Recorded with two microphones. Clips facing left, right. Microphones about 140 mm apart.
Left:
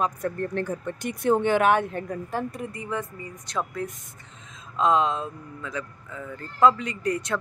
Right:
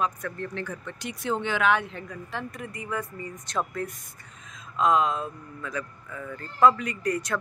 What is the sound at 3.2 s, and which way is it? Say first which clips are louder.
Speech: even; 15° left (ahead or behind).